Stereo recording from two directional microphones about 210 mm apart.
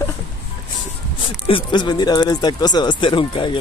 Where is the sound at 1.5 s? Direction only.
25° left (ahead or behind).